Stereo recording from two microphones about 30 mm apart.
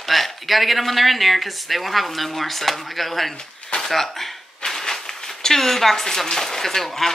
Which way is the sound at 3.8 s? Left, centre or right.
Centre.